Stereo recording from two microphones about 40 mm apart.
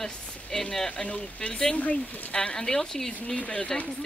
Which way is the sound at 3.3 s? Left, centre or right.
Left.